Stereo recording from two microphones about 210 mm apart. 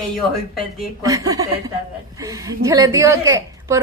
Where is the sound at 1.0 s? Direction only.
15° right (ahead or behind).